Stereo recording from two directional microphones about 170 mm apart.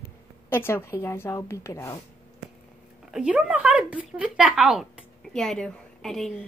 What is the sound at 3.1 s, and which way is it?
Speech, 5° right (ahead or behind).